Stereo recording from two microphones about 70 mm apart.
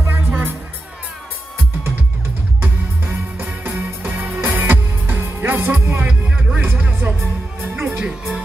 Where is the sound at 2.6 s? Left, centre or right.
Right.